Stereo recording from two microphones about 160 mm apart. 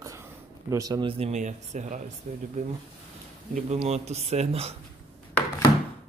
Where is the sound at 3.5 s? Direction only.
45° right (ahead or behind).